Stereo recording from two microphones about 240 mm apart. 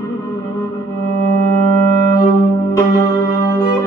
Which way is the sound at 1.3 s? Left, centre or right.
Right.